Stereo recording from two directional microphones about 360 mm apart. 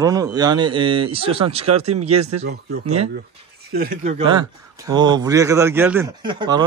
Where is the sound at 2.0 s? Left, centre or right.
Right.